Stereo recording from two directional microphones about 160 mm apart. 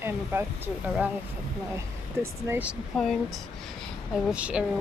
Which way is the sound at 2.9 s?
Centre (ahead or behind).